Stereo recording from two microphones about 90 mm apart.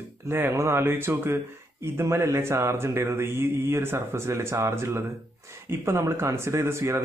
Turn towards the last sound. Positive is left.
turn(degrees=-30)  # may be behind; listen again after turning